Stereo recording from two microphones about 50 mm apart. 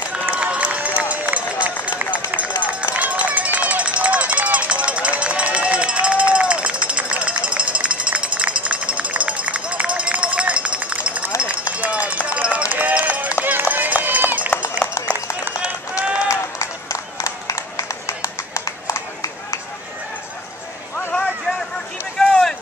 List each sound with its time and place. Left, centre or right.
0.1 s run: right
6.9 s music: right
11.7 s run: right
16.3 s a sound: left
22.2 s run: centre